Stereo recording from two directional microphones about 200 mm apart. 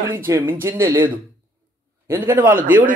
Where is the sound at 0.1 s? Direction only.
10° right (ahead or behind).